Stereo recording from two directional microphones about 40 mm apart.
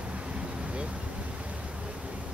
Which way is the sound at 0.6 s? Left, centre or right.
Right.